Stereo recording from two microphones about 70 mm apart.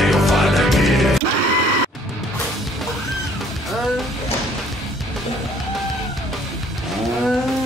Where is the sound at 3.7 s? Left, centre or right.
Centre.